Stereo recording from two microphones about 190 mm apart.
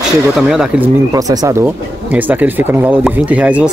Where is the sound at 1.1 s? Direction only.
15° right (ahead or behind).